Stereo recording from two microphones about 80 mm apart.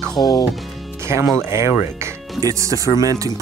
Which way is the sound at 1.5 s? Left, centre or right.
Right.